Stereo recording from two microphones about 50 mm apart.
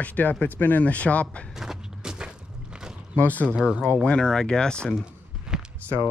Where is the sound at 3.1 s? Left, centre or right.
Left.